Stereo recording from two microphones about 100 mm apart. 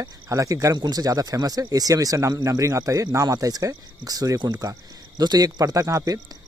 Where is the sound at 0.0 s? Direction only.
30° right (ahead or behind).